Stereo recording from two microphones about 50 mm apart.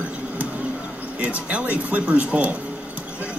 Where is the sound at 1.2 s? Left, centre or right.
Right.